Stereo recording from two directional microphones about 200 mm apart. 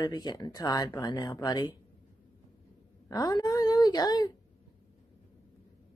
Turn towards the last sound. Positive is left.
turn(degrees=20)  # may be behind; listen again after turning